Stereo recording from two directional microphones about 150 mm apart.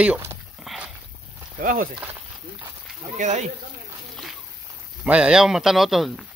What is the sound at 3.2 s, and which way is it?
Speech, 50° right (ahead or behind).